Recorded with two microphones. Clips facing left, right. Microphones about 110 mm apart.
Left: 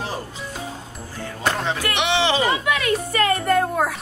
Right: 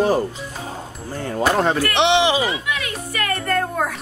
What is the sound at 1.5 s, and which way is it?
Speech, 50° right (ahead or behind).